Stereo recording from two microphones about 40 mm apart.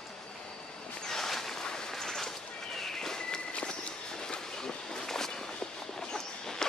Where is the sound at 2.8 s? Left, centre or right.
Centre.